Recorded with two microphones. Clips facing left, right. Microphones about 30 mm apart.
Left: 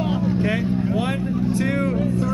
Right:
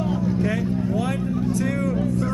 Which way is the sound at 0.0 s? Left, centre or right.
Left.